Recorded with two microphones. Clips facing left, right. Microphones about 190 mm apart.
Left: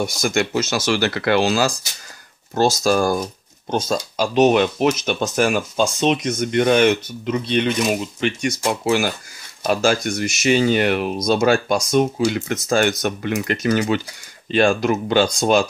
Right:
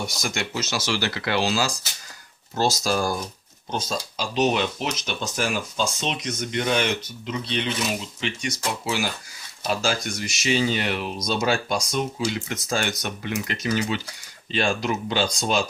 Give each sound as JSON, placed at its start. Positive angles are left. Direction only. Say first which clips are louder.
{"t": 0.0, "sound": "speech", "louder": "left 9 dB", "side_deg": 50}